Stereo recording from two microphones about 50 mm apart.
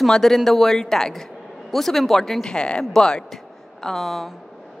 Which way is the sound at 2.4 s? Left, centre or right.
Centre.